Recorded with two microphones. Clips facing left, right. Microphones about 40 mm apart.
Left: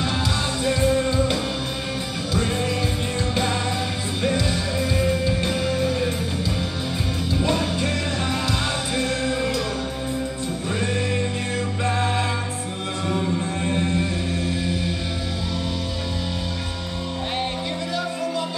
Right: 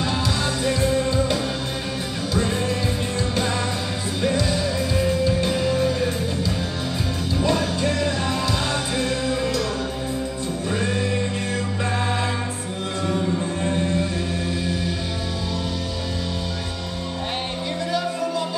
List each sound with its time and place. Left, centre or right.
0.7 s music: left
4.2 s music: centre
7.4 s music: centre